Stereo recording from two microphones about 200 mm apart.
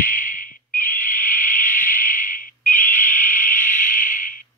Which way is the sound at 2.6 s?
10° left (ahead or behind).